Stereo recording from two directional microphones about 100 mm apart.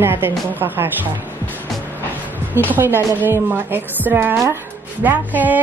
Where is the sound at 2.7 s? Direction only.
20° right (ahead or behind).